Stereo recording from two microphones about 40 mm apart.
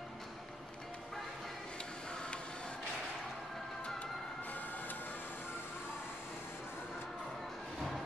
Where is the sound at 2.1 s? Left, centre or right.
Centre.